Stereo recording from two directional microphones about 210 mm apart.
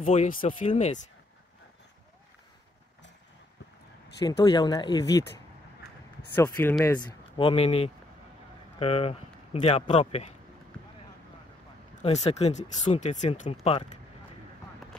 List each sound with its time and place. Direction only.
0.0 s speech: 35° left (ahead or behind)
4.2 s speech: 20° left (ahead or behind)
6.3 s speech: 10° left (ahead or behind)
7.0 s speech: 25° left (ahead or behind)
12.0 s speech: 30° left (ahead or behind)